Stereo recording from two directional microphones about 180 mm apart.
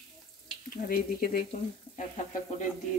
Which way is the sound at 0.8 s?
55° left (ahead or behind).